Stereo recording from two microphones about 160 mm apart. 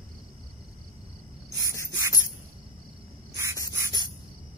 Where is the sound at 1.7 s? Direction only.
15° left (ahead or behind).